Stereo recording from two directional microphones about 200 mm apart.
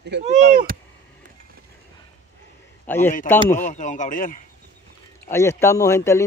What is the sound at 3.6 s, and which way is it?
Speech, 40° left (ahead or behind).